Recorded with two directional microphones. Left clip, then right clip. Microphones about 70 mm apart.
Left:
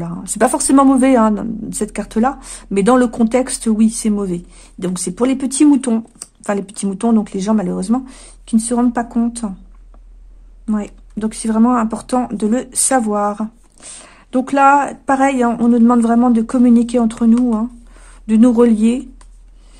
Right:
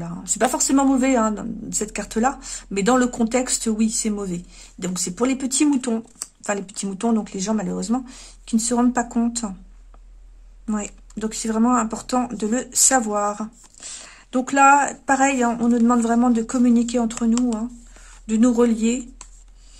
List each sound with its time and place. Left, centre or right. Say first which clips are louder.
0.2 s speech: left 6 dB; left
0.5 s speech: left 8 dB; left
2.4 s speech: left 6 dB; left
4.1 s speech: left 8 dB; left
6.9 s speech: left 6 dB; left
7.3 s speech: left 7 dB; left
8.6 s speech: left 2 dB; centre
10.7 s speech: left 5 dB; centre; by 19.0 s left